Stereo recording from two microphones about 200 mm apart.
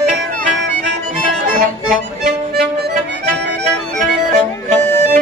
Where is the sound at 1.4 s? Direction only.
40° right (ahead or behind).